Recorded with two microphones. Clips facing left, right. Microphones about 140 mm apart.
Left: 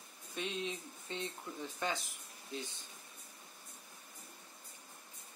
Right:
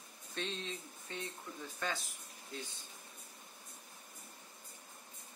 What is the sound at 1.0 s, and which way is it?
Speech, 25° left (ahead or behind).